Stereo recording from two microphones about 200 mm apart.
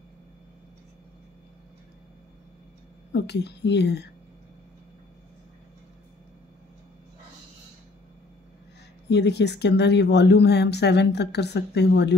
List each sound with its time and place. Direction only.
3.1 s speech: 60° left (ahead or behind)
9.1 s speech: 60° left (ahead or behind)